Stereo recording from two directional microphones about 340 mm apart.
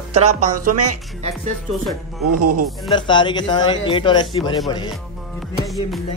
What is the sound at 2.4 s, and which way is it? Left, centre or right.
Speech, right.